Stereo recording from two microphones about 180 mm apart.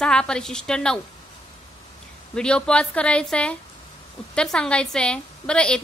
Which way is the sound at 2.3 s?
5° left (ahead or behind).